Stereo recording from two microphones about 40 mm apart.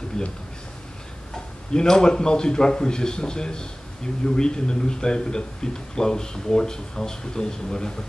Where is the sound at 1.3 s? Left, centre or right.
Centre.